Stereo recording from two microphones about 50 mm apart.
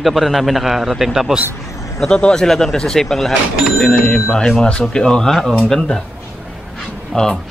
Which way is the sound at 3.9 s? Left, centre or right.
Left.